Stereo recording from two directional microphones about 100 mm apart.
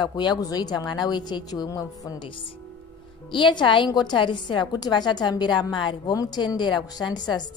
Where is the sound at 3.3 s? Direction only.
55° left (ahead or behind).